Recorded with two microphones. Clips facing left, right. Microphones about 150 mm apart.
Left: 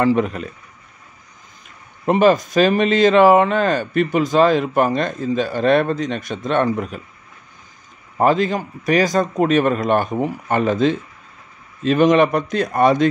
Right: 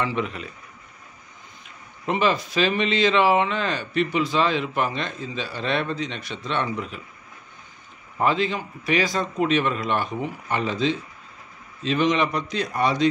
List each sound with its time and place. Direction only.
0.0 s a man's voice: 45° left (ahead or behind)
2.0 s a man's voice: 45° left (ahead or behind)
8.2 s a man's voice: 45° left (ahead or behind)